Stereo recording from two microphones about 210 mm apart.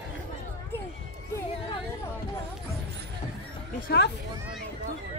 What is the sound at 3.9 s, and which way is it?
Speech, 50° left (ahead or behind).